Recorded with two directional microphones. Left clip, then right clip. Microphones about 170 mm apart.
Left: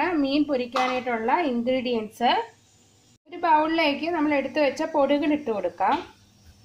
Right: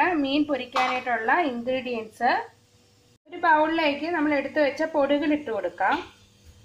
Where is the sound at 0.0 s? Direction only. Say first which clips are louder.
Right 1 dB; 15° left (ahead or behind).